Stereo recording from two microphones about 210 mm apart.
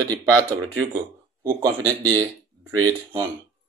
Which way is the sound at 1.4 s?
15° right (ahead or behind).